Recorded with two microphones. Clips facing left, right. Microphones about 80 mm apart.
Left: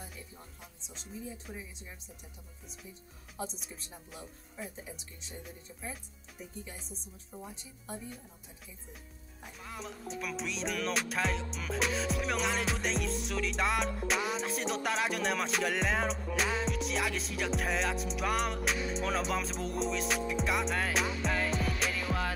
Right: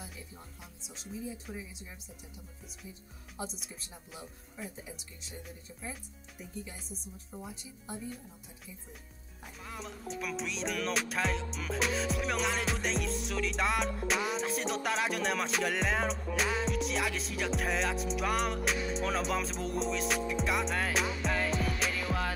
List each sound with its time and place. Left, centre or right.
0.0 s music: centre
3.3 s music: centre
9.4 s music: centre